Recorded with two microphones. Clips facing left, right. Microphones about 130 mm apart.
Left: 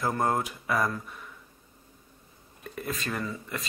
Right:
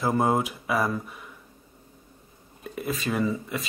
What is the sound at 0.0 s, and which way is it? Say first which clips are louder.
Speech: right 4 dB; 5° right (ahead or behind).